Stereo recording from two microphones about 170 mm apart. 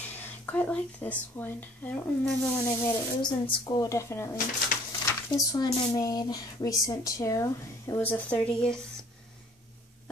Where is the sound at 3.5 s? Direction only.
20° left (ahead or behind); by 8.7 s 5° left (ahead or behind).